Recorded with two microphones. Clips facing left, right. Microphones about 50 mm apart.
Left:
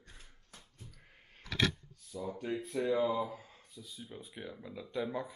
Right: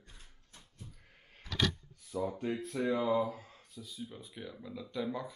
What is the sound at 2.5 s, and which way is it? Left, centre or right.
Speech, centre.